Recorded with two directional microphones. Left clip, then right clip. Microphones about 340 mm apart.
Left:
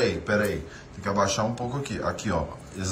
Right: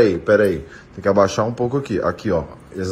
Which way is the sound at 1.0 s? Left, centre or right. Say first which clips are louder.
Right 9 dB; centre.